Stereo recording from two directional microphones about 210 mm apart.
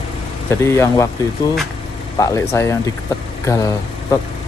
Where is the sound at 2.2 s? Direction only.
15° left (ahead or behind).